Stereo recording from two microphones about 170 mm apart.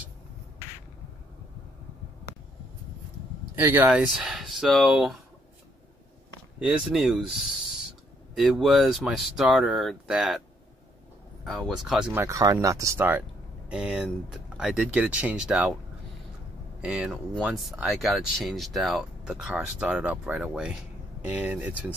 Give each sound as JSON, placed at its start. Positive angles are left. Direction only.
{"t": 3.5, "sound": "speech", "side_deg": -15}
{"t": 6.6, "sound": "speech", "side_deg": -5}
{"t": 11.4, "sound": "speech", "side_deg": 0}
{"t": 16.8, "sound": "speech", "side_deg": -5}